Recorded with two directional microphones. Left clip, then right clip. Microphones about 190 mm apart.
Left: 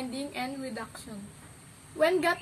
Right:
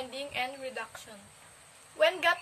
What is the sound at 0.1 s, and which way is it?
A woman's voice, 15° right (ahead or behind).